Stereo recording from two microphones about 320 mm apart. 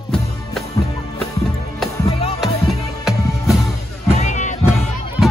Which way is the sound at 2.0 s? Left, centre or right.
Centre.